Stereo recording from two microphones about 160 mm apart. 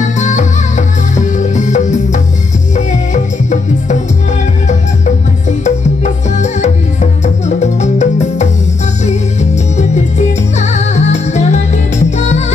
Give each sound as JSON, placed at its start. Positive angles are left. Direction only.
{"t": 0.2, "sound": "music", "side_deg": 45}
{"t": 5.6, "sound": "music", "side_deg": 45}